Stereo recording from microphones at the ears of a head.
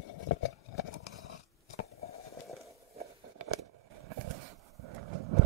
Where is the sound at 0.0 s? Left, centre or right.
Left.